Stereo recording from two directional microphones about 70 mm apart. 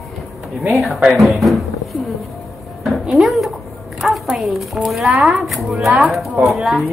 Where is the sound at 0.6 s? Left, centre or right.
Centre.